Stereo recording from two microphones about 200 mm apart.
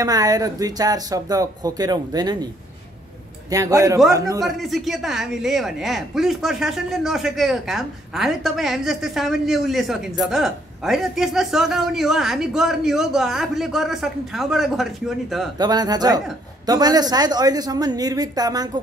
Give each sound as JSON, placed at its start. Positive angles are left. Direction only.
{"t": 0.0, "sound": "speech", "side_deg": -20}
{"t": 3.4, "sound": "a man's voice", "side_deg": -15}
{"t": 4.4, "sound": "speech", "side_deg": 0}
{"t": 15.6, "sound": "speech", "side_deg": -20}